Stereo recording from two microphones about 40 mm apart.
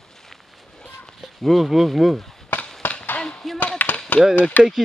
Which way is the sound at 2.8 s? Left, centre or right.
Left.